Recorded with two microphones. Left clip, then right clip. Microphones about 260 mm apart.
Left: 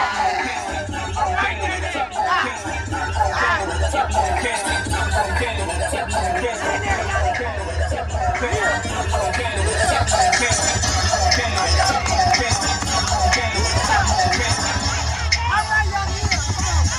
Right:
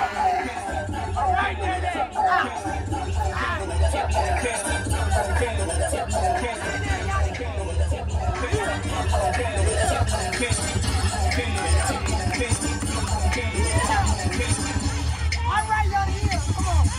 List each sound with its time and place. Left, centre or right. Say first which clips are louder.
3.9 s music: left 5 dB; left
9.8 s music: left 11 dB; left; by 14.5 s centre